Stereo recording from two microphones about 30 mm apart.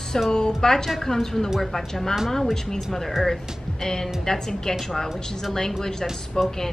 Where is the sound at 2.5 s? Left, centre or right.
Centre.